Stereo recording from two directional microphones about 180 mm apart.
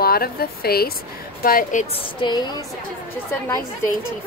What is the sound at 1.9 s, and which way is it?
Speech, 25° left (ahead or behind).